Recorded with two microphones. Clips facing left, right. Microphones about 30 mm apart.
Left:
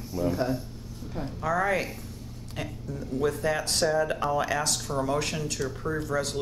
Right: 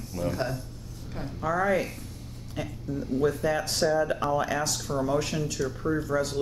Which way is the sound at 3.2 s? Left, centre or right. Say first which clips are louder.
Even; left.